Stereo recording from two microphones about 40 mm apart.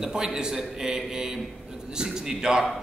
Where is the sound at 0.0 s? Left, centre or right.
Centre.